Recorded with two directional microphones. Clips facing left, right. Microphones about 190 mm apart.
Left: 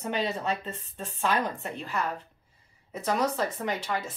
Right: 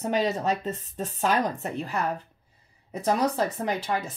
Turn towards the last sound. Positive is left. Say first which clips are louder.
# right 3 dB
turn(degrees=-35)  # may be behind; listen again after turning